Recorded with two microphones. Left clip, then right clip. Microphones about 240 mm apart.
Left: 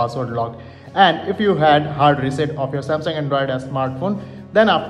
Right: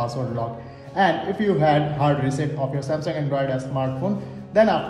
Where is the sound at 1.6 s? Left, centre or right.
Left.